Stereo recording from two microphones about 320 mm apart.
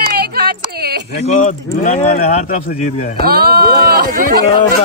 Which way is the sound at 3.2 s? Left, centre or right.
Right.